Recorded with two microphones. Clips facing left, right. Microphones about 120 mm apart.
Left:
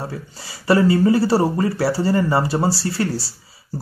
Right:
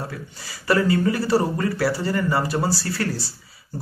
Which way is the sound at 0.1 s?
30° left (ahead or behind).